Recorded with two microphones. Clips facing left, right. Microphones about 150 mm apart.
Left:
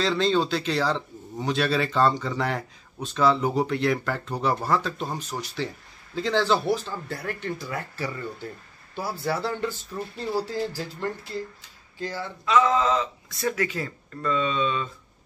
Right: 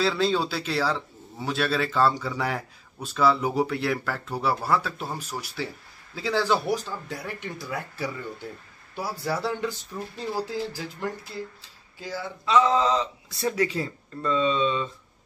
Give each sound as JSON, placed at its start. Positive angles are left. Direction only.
{"t": 0.0, "sound": "a man's voice", "side_deg": -5}
{"t": 12.4, "sound": "speech", "side_deg": -30}